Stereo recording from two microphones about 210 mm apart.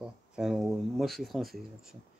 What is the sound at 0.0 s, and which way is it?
Speech, centre (ahead or behind).